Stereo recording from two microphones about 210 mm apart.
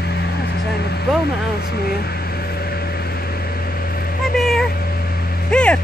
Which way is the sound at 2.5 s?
50° left (ahead or behind).